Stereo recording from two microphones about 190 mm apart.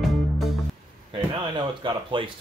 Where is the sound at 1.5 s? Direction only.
25° right (ahead or behind).